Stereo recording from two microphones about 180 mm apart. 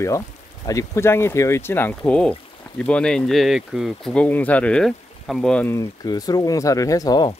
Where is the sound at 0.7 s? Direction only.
15° left (ahead or behind).